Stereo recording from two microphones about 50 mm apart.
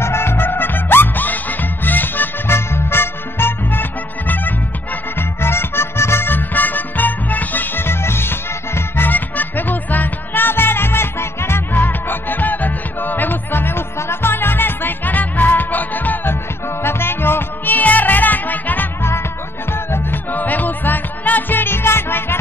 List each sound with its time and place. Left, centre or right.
0.0 s music: left
2.5 s music: left
5.4 s music: left
7.8 s music: left
9.1 s music: left
11.7 s music: left
16.8 s music: left
17.7 s music: left
19.7 s music: left
20.2 s music: left